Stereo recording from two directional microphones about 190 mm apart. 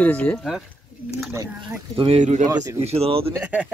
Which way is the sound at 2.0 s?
35° right (ahead or behind).